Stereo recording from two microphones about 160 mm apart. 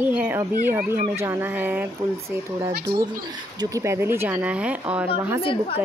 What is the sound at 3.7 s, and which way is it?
Speech, 15° right (ahead or behind).